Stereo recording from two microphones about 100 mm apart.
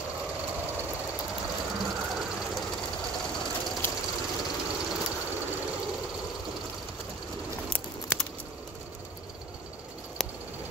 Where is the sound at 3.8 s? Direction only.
25° left (ahead or behind).